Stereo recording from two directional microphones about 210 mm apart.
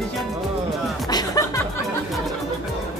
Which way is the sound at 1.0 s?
15° left (ahead or behind).